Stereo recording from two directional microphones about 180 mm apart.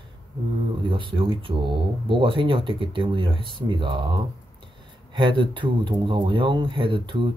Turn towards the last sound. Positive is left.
turn(degrees=-25)  # may be behind; listen again after turning